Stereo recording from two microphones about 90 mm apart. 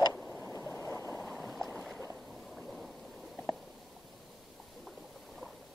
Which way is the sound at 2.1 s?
Centre (ahead or behind).